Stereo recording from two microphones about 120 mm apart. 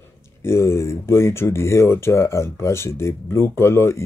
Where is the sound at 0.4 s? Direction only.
20° left (ahead or behind).